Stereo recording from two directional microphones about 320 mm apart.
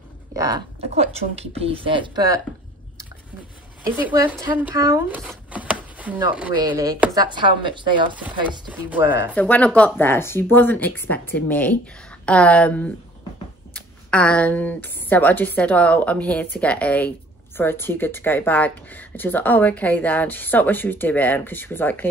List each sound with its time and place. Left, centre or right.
0.4 s speech: centre
4.1 s speech: centre
8.9 s speech: centre
9.3 s speech: centre